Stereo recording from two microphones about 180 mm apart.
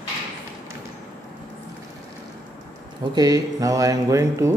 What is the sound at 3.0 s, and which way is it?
Speech, 20° right (ahead or behind).